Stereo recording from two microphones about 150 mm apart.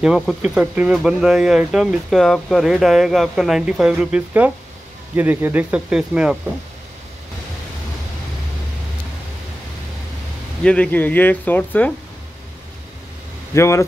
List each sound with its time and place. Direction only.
0.0 s speech: 5° right (ahead or behind)
10.6 s speech: 10° left (ahead or behind)
13.6 s speech: 20° left (ahead or behind)